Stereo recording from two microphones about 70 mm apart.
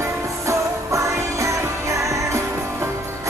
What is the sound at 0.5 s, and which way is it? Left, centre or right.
Music, right.